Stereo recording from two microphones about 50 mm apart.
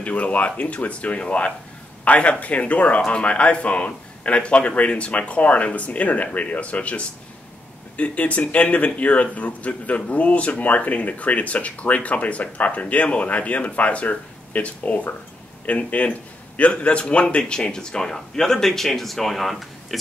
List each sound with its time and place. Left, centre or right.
0.0 s a man's voice: left; by 20.0 s centre